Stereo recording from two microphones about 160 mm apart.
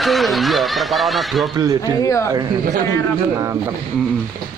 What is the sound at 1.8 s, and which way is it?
Speech, 20° left (ahead or behind).